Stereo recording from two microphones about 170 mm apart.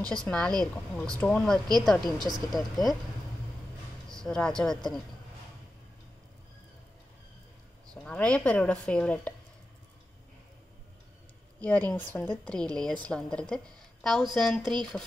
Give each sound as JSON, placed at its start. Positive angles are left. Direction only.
{"t": 0.1, "sound": "a woman's voice", "side_deg": 5}
{"t": 2.0, "sound": "speech", "side_deg": -25}
{"t": 2.5, "sound": "a woman's voice", "side_deg": 0}
{"t": 4.1, "sound": "speech", "side_deg": 5}
{"t": 7.9, "sound": "speech", "side_deg": 5}
{"t": 11.6, "sound": "a woman's voice", "side_deg": 10}